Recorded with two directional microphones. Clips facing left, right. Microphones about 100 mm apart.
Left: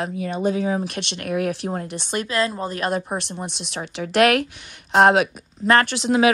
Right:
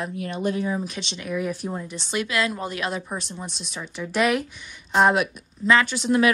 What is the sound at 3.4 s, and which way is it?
Speech, 70° left (ahead or behind).